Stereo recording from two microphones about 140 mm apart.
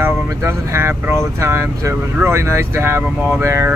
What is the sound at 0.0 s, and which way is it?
Speech, 20° right (ahead or behind).